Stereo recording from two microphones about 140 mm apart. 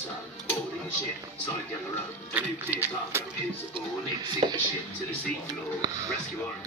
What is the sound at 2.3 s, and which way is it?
Speech, 15° right (ahead or behind).